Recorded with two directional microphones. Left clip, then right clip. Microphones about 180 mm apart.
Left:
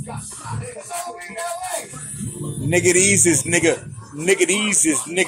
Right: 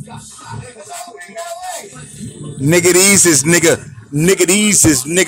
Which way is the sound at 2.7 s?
45° right (ahead or behind).